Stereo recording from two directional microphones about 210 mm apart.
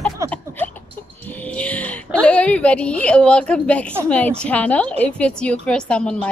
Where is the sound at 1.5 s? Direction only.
5° left (ahead or behind).